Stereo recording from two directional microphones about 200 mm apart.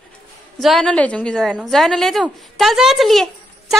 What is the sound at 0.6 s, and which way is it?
A woman's voice, centre (ahead or behind).